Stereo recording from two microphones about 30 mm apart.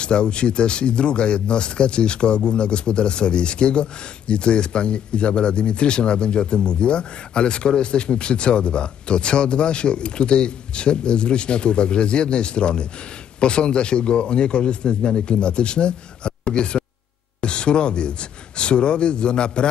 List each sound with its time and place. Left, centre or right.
0.0 s speech: left